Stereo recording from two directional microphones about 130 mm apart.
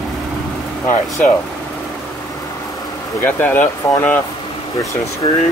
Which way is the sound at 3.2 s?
15° left (ahead or behind).